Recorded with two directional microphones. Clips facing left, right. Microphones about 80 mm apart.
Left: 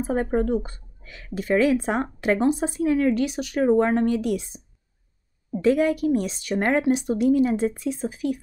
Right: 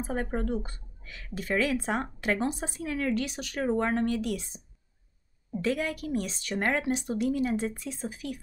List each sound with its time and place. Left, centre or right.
0.0 s speech: left
5.6 s speech: centre